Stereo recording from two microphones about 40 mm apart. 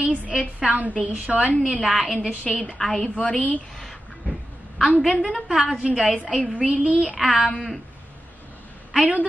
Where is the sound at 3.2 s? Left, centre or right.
Left.